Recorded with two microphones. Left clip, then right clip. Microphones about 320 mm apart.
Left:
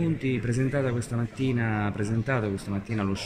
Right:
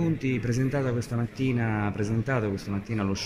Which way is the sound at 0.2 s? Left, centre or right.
Centre.